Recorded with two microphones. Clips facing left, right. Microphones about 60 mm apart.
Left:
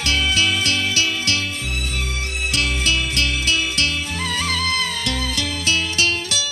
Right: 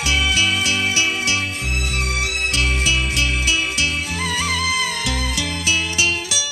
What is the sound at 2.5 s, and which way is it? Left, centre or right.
Music, centre.